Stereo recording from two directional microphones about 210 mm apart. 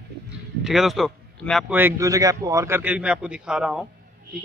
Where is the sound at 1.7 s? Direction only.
15° right (ahead or behind).